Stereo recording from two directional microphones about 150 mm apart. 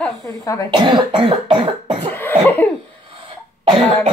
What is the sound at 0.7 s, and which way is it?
Cough, 30° right (ahead or behind).